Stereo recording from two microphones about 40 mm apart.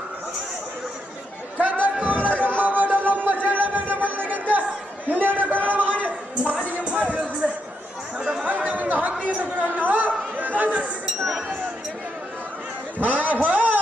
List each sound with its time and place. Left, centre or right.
1.6 s music: right
5.9 s a sound: right
6.8 s music: right
8.2 s chatter: centre
8.5 s chatter: right
13.0 s a sound: right